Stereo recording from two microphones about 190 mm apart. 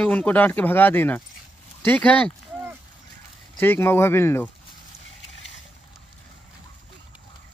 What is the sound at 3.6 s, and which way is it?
Speech, 10° left (ahead or behind).